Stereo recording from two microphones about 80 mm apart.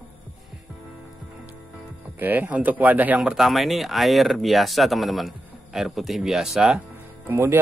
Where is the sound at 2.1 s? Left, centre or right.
Right.